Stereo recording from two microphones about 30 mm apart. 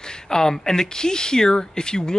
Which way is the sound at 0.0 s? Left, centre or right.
Left.